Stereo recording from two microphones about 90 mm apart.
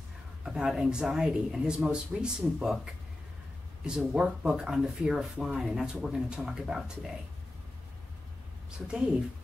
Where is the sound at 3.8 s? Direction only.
10° right (ahead or behind).